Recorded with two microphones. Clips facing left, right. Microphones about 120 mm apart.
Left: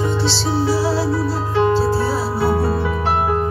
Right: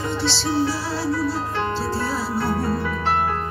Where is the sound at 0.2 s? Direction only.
15° left (ahead or behind).